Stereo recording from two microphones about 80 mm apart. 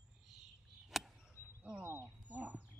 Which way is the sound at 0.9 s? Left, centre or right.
Centre.